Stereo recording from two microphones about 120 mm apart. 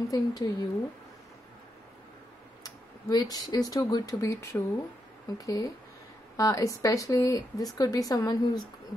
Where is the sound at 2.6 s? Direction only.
30° left (ahead or behind).